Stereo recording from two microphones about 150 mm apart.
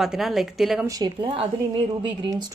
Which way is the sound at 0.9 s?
25° right (ahead or behind).